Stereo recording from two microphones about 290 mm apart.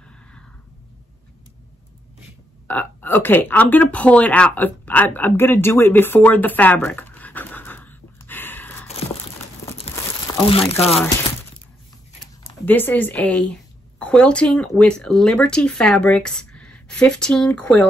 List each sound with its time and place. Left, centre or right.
2.7 s speech: centre
8.8 s a sound: left
9.8 s crumpling: centre
12.6 s speech: centre